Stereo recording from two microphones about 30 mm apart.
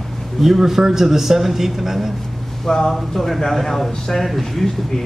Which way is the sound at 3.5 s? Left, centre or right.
Centre.